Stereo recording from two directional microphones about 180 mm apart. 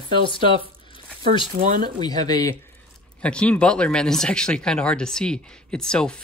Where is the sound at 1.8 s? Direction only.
20° left (ahead or behind).